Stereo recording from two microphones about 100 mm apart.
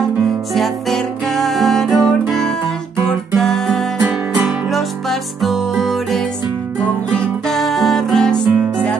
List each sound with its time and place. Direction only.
0.6 s music: centre (ahead or behind)
7.4 s music: centre (ahead or behind)
8.5 s music: 15° right (ahead or behind)